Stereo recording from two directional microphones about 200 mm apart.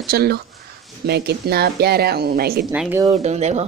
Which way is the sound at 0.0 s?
55° right (ahead or behind).